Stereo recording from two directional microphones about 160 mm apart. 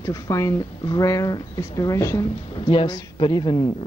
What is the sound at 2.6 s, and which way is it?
Speech, 30° left (ahead or behind).